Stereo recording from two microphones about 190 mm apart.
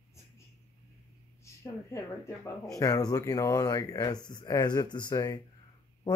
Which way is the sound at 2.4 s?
15° left (ahead or behind).